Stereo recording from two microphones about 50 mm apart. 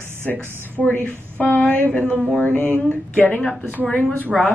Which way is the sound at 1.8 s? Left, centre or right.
Left.